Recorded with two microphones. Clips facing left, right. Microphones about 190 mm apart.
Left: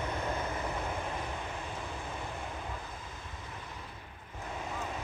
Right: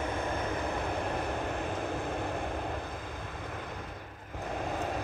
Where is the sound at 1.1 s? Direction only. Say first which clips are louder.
Right 6 dB; 60° right (ahead or behind).